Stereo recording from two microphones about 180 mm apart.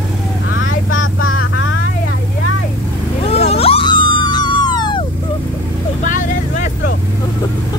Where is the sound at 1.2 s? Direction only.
90° left.